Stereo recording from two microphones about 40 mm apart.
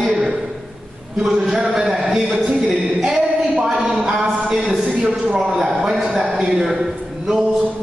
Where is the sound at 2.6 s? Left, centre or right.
Centre.